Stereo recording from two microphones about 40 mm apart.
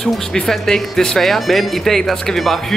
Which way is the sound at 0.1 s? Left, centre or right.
Centre.